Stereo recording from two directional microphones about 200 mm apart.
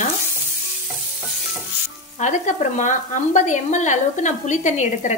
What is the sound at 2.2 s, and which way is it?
Speech, 40° left (ahead or behind).